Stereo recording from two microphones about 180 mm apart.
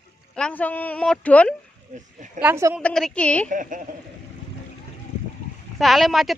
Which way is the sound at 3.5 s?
45° right (ahead or behind).